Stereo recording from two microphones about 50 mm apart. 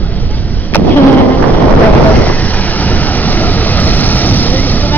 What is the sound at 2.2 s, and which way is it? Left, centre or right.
Vehicle, left.